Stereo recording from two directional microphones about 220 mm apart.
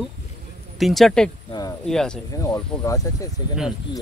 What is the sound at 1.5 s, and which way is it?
Speech, 15° left (ahead or behind).